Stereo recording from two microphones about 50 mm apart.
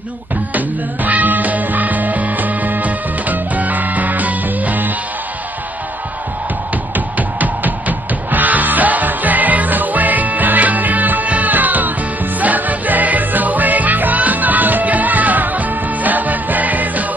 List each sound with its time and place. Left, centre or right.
0.6 s music: right
7.2 s music: right